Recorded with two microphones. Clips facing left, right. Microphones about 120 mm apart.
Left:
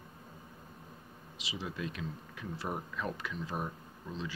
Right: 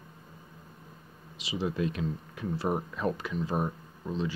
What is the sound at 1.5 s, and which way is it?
Speech, 35° right (ahead or behind).